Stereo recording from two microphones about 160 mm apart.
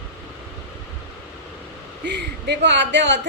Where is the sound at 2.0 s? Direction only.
90° right.